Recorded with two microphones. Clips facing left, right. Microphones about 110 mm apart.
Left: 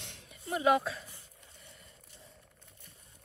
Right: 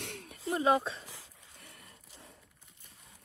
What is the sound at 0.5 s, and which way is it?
Speech, 30° right (ahead or behind).